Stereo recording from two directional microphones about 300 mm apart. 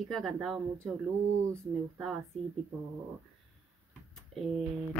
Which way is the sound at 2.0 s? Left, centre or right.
Centre.